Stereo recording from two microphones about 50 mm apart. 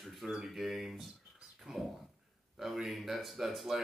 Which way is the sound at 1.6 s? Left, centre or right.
Centre.